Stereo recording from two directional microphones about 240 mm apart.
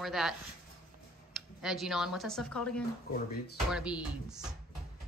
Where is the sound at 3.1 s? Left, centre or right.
Left.